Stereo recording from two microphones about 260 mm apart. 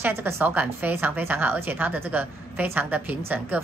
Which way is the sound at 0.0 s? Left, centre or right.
Centre.